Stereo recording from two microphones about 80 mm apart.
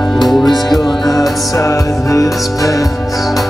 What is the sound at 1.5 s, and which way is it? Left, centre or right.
Music, left.